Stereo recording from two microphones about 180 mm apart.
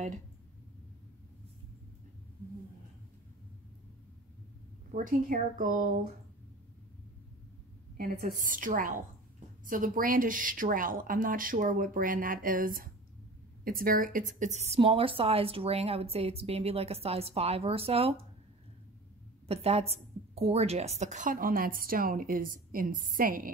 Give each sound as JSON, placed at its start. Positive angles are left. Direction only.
{"t": 4.9, "sound": "a woman's voice", "side_deg": -50}
{"t": 8.0, "sound": "a woman's voice", "side_deg": -50}
{"t": 19.4, "sound": "a woman's voice", "side_deg": -35}